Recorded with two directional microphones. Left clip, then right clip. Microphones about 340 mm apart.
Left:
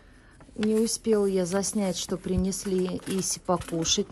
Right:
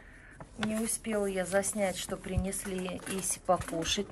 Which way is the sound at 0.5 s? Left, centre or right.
Centre.